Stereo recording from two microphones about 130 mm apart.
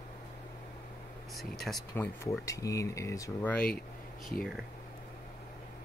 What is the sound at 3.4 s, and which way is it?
Speech, 10° left (ahead or behind).